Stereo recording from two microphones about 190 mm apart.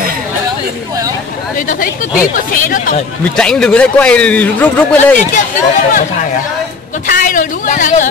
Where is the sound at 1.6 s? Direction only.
45° left (ahead or behind).